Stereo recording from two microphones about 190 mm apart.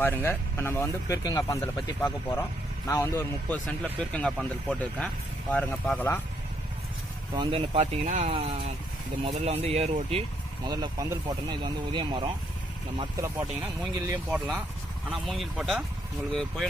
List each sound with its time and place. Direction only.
0.0 s speech: 10° left (ahead or behind)
7.3 s speech: 35° right (ahead or behind)
10.6 s speech: 20° right (ahead or behind)
13.1 s speech: 15° right (ahead or behind)
15.0 s speech: centre (ahead or behind)